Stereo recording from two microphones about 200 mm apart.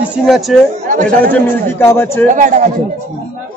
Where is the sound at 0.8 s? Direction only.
40° right (ahead or behind).